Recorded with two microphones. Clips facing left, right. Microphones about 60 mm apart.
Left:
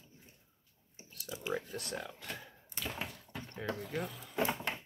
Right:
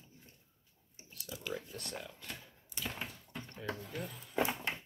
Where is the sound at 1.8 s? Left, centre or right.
Left.